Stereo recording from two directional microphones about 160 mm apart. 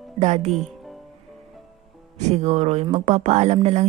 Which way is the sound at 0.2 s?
45° right (ahead or behind).